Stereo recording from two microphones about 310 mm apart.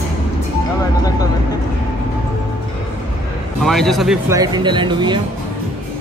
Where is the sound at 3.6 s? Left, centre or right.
Centre.